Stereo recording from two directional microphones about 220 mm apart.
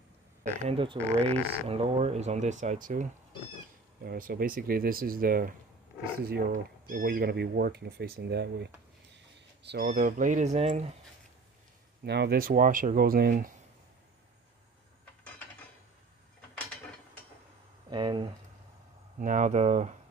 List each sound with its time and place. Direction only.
0.7 s speech: 25° right (ahead or behind); by 8.6 s 50° right (ahead or behind)
9.1 s a sound: 50° right (ahead or behind)
9.8 s speech: 35° right (ahead or behind)
12.0 s speech: 50° right (ahead or behind)
17.8 s speech: 20° right (ahead or behind)
19.1 s speech: 35° right (ahead or behind)